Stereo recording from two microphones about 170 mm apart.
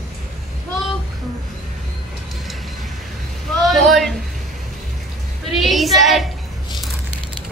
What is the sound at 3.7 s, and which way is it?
Speech, centre (ahead or behind).